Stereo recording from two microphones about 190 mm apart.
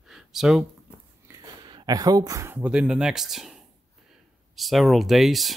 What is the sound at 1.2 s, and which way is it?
Speech, 15° right (ahead or behind).